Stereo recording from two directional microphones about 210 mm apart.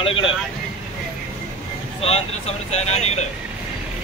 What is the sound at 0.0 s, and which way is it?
Vehicle, 25° left (ahead or behind).